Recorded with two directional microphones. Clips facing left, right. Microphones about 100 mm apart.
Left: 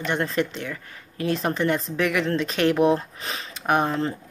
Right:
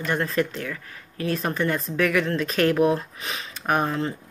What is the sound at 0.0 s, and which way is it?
Speech, 25° left (ahead or behind).